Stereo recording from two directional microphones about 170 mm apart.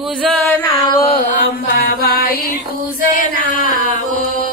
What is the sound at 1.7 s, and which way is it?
Mantra, 60° left (ahead or behind).